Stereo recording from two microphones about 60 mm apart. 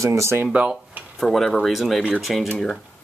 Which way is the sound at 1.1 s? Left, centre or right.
Centre.